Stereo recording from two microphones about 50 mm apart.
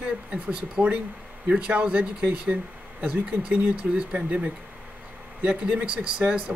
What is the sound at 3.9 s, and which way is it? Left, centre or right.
Speech, right.